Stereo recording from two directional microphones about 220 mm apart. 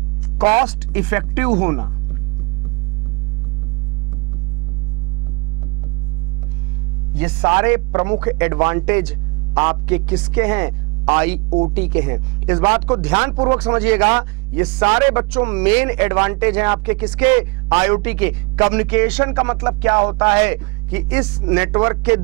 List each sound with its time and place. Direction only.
0.4 s speech: 30° right (ahead or behind)
0.7 s a man's voice: 10° right (ahead or behind)
7.2 s a man's voice: 15° right (ahead or behind)
12.5 s music: 25° right (ahead or behind)
13.6 s a man's voice: 10° right (ahead or behind)
14.8 s music: 20° right (ahead or behind)
15.3 s a man's voice: 10° right (ahead or behind)
19.3 s music: 20° right (ahead or behind)
20.3 s a man's voice: 10° right (ahead or behind)